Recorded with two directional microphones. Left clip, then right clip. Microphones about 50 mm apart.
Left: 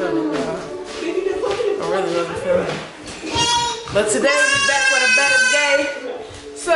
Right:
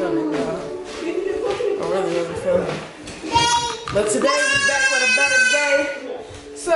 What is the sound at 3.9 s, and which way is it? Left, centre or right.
A woman's voice, centre.